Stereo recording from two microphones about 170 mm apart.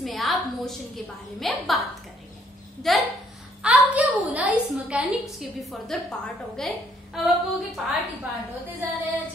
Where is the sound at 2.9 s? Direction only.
Centre (ahead or behind).